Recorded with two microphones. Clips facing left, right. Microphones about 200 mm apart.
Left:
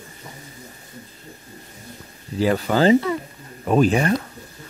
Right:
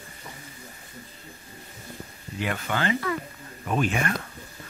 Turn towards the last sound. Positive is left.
turn(degrees=35)  # may be behind; listen again after turning